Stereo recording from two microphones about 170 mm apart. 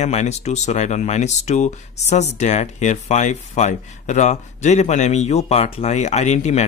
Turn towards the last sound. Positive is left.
turn(degrees=40)  # may be behind; listen again after turning